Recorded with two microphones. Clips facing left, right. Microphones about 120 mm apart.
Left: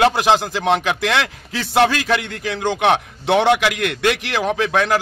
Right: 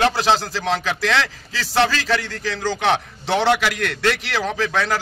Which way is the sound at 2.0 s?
60° left (ahead or behind).